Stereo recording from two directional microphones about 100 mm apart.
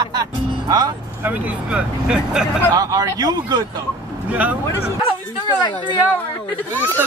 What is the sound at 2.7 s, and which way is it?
Speech, 40° right (ahead or behind).